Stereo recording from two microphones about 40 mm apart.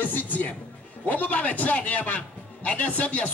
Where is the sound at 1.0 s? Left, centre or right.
Left.